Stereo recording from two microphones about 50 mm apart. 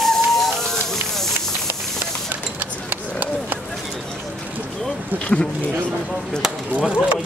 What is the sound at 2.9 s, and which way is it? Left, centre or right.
Run, right.